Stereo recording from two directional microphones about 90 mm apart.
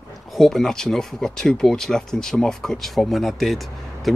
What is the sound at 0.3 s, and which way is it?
Speech, centre (ahead or behind).